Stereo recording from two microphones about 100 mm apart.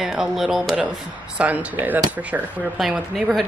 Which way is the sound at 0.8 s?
10° right (ahead or behind).